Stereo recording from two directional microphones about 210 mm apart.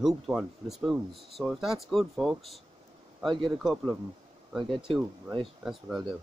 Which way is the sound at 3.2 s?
20° right (ahead or behind).